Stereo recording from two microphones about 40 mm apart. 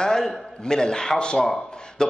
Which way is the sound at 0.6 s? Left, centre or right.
Centre.